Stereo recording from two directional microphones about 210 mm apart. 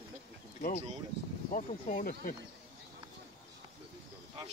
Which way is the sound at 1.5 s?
35° left (ahead or behind).